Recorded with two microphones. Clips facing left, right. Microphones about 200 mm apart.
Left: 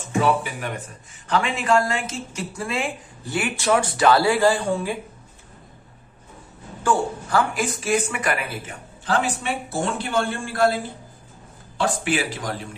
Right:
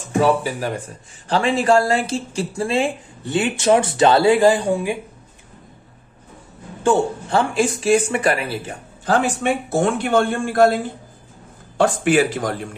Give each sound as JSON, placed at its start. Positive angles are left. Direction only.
{"t": 0.2, "sound": "speech", "side_deg": -35}
{"t": 6.8, "sound": "speech", "side_deg": -25}
{"t": 9.0, "sound": "a man's voice", "side_deg": -50}
{"t": 11.8, "sound": "a man's voice", "side_deg": -50}